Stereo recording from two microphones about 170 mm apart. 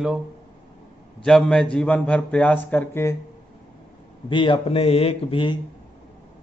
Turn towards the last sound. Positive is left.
turn(degrees=30)  # may be behind; listen again after turning